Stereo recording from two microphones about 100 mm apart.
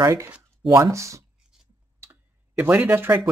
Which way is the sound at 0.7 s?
30° right (ahead or behind).